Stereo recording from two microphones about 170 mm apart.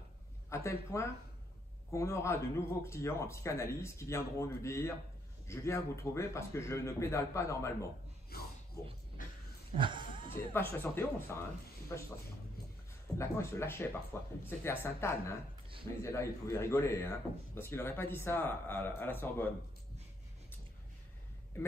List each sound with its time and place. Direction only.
0.5 s a man's voice: 15° left (ahead or behind)
8.3 s a sound: 65° left (ahead or behind)
9.8 s music: 30° right (ahead or behind)
10.3 s a man's voice: 15° left (ahead or behind)
13.2 s a man's voice: 15° left (ahead or behind)